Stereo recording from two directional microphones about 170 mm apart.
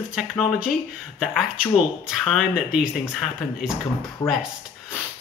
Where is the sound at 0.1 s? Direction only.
Centre (ahead or behind).